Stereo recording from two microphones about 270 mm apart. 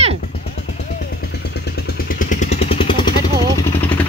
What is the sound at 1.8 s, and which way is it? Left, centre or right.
Vehicle, left.